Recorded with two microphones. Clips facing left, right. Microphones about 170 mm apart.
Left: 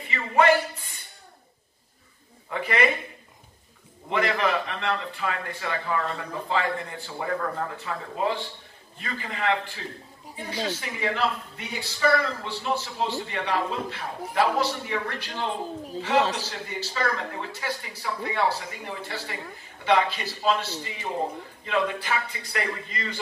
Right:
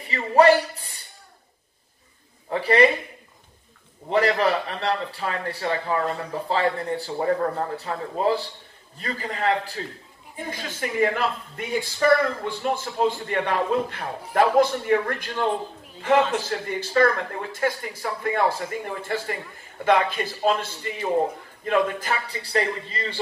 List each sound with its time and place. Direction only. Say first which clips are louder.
0.0 s a sound: right 5 dB; 35° right (ahead or behind)
2.5 s speech: right 7 dB; 35° right (ahead or behind)
4.1 s a man's voice: right 4 dB; 35° right (ahead or behind)
16.3 s a man's voice: right 6 dB; 50° right (ahead or behind); by 23.1 s 30° right (ahead or behind)